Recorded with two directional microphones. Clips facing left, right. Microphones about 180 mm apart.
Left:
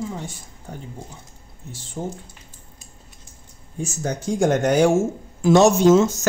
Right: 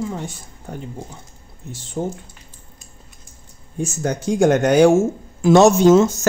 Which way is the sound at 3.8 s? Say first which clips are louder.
Right 4 dB; 70° right (ahead or behind).